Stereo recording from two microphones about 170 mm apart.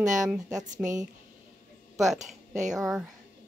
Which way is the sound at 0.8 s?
5° right (ahead or behind).